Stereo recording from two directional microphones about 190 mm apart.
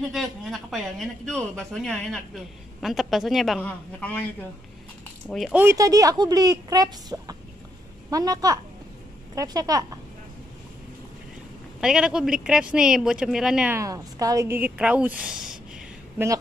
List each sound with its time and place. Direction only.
0.1 s speech: centre (ahead or behind)
5.3 s speech: 5° right (ahead or behind)
11.8 s speech: 5° right (ahead or behind)